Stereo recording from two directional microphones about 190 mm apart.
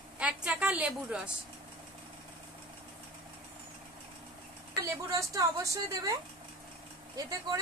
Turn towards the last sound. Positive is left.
turn(degrees=-20)  # may be behind; listen again after turning